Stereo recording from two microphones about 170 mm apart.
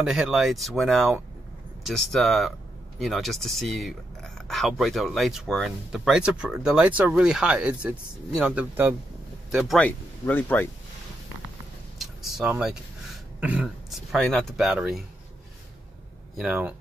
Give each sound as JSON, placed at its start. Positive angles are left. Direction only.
{"t": 0.0, "sound": "speech", "side_deg": -5}
{"t": 9.8, "sound": "speech", "side_deg": 10}
{"t": 12.0, "sound": "vehicle", "side_deg": 0}
{"t": 13.4, "sound": "speech", "side_deg": -10}
{"t": 16.3, "sound": "speech", "side_deg": -5}